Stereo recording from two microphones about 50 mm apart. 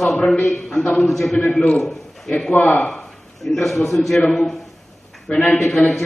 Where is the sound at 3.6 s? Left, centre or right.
Centre.